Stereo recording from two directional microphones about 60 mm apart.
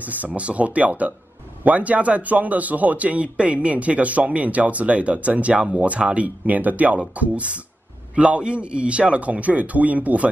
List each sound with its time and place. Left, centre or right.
0.0 s a man's voice: right